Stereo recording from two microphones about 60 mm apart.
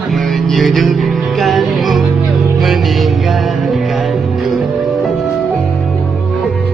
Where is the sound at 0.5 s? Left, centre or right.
Centre.